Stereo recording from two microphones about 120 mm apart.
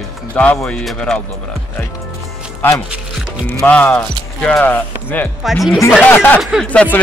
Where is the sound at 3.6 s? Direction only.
15° left (ahead or behind).